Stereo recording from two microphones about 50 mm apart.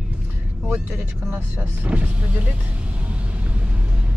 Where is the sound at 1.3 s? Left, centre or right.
Right.